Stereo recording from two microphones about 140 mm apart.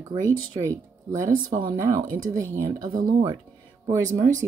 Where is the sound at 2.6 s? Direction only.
25° right (ahead or behind).